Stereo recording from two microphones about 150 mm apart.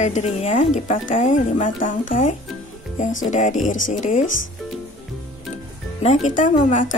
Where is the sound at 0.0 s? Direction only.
50° left (ahead or behind).